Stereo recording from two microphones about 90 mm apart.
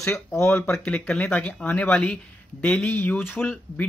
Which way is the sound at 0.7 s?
10° left (ahead or behind).